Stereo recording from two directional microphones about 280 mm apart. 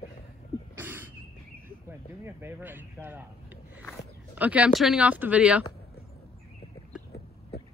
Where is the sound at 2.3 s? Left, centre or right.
Centre.